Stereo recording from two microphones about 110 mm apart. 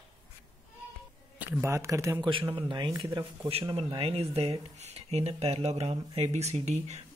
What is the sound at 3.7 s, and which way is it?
Speech, 60° right (ahead or behind).